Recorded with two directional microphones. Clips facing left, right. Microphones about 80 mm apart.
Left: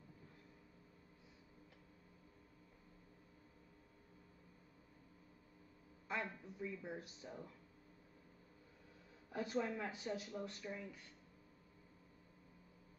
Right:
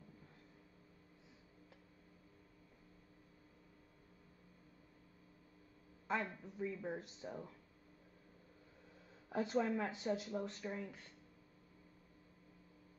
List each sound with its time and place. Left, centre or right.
6.0 s speech: right
9.3 s speech: right